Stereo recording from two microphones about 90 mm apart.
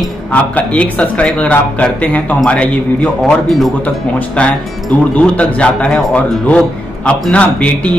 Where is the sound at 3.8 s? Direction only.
15° left (ahead or behind).